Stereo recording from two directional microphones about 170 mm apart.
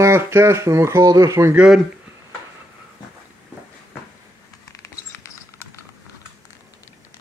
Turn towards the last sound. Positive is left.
turn(degrees=15)  # may be behind; listen again after turning